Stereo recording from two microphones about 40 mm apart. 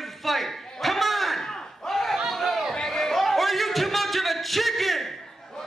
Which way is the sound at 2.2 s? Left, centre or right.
Centre.